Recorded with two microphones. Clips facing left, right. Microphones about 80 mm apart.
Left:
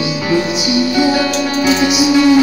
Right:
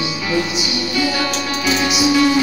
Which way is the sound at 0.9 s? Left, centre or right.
Left.